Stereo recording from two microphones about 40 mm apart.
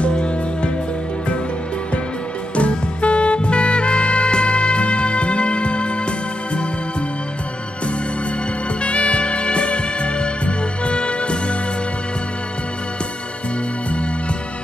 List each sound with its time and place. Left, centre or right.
0.0 s music: left
2.5 s music: left
8.8 s music: left